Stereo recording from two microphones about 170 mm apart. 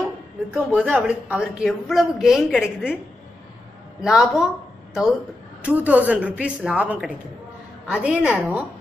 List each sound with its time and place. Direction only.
0.0 s a woman's voice: 5° right (ahead or behind)
4.0 s a woman's voice: 5° right (ahead or behind)
5.6 s a woman's voice: 10° right (ahead or behind)